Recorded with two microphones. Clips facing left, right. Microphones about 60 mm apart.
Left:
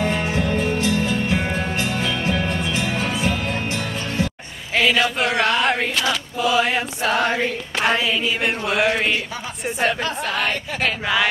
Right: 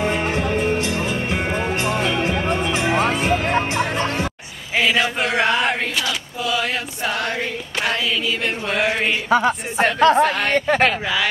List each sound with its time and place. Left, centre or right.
0.4 s music: centre
3.0 s music: right
4.7 s a sound: centre
5.2 s chant: centre
6.0 s a sound: left
8.6 s mantra: centre
9.3 s a woman's voice: right